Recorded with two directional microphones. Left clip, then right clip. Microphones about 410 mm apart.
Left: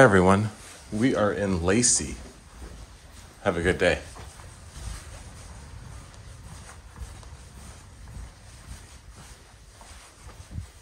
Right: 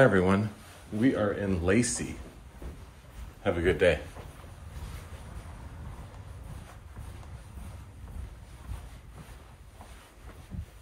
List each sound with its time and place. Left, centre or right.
0.0 s speech: centre
3.4 s speech: centre